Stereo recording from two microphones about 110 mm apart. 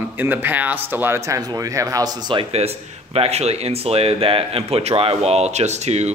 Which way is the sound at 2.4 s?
70° right (ahead or behind).